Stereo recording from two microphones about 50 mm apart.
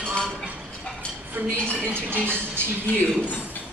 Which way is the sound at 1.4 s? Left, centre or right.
Right.